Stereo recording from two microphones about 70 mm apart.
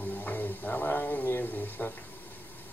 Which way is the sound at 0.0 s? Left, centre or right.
Left.